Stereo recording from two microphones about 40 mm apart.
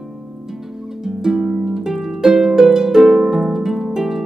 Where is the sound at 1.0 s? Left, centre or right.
Centre.